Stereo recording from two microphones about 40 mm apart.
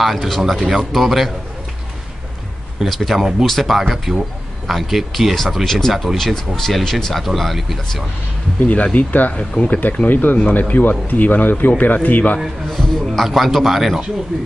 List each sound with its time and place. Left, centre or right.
0.0 s speech: centre
2.8 s speech: centre
3.2 s speech: centre
3.4 s speech: centre
8.9 s speech: left
9.3 s speech: left
9.7 s speech: left
12.7 s speech: centre
13.2 s speech: centre